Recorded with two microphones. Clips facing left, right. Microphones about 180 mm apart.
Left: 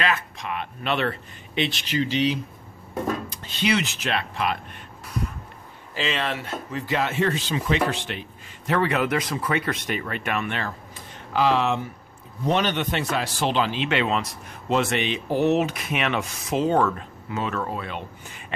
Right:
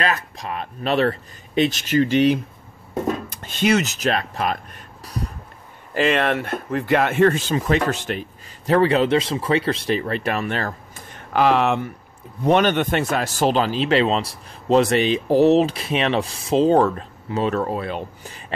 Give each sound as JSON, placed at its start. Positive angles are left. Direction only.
{"t": 0.0, "sound": "speech", "side_deg": -35}
{"t": 5.0, "sound": "a sound", "side_deg": -35}
{"t": 5.9, "sound": "speech", "side_deg": -55}